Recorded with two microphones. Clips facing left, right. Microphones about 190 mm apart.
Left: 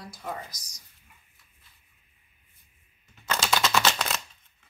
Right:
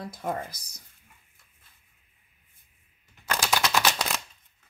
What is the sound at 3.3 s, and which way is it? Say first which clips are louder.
Typewriter: even; 10° right (ahead or behind).